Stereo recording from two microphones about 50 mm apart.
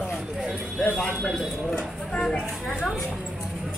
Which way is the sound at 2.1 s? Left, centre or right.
Centre.